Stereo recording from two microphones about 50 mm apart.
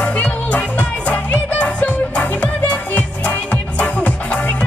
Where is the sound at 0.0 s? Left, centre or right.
Left.